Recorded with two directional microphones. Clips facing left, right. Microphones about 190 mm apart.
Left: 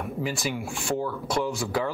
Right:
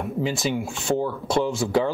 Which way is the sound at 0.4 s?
20° right (ahead or behind).